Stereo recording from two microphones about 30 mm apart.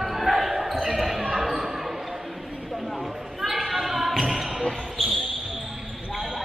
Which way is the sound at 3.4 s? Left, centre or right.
Centre.